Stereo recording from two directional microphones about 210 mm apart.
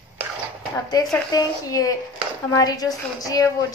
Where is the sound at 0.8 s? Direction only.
20° left (ahead or behind).